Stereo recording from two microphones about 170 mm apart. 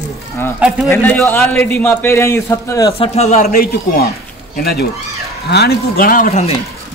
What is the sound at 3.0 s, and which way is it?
Speech, 40° left (ahead or behind).